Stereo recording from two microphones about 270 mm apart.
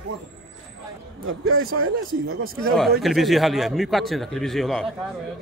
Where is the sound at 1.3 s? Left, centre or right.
Right.